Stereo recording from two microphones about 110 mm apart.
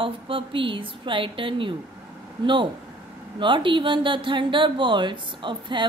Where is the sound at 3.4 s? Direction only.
50° right (ahead or behind).